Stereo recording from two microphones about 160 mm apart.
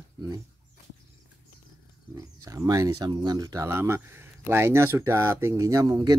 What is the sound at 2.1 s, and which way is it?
Speech, 20° right (ahead or behind).